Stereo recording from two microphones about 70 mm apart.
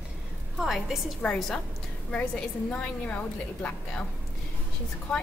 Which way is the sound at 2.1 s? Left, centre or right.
Centre.